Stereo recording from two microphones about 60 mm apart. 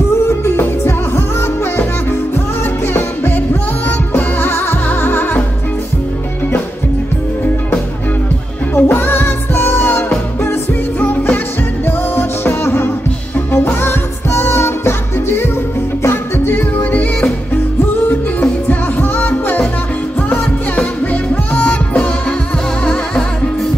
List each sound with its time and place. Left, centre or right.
0.3 s music: left
2.9 s music: left
8.7 s music: left